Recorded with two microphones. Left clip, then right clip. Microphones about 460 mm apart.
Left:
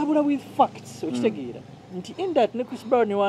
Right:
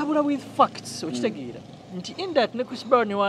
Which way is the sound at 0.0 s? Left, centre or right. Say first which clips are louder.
Left 1 dB; right.